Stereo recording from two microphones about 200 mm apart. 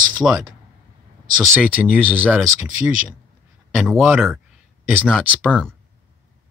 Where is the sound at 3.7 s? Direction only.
Centre (ahead or behind).